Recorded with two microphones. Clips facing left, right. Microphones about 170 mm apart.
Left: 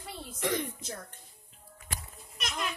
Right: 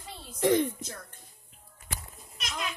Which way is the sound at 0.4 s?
25° right (ahead or behind).